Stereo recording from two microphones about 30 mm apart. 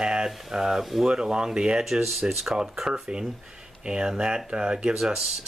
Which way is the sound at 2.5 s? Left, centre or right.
Right.